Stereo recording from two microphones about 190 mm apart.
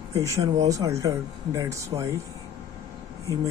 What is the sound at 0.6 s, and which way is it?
Speech, 20° right (ahead or behind).